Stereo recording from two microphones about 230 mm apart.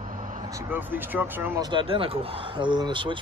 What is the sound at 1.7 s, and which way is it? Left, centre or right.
Speech, right.